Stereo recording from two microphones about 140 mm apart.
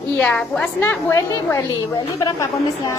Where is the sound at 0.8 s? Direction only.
20° left (ahead or behind).